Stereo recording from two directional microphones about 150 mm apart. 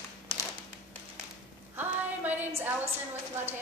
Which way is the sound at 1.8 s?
10° right (ahead or behind).